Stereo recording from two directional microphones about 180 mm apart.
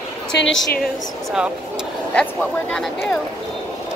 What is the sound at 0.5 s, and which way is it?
Speech, centre (ahead or behind).